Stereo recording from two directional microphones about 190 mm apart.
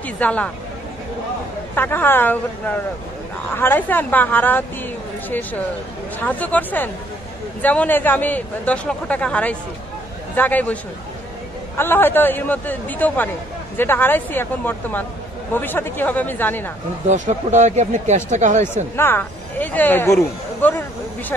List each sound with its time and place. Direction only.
0.2 s a man's voice: 5° left (ahead or behind)
1.8 s a man's voice: 10° left (ahead or behind)
6.1 s a man's voice: 10° left (ahead or behind)
17.1 s speech: 40° right (ahead or behind)
18.9 s a man's voice: 10° left (ahead or behind)